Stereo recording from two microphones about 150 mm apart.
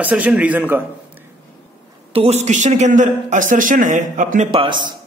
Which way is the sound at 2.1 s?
45° right (ahead or behind).